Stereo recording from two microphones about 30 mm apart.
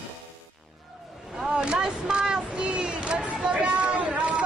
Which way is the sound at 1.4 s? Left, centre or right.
Right.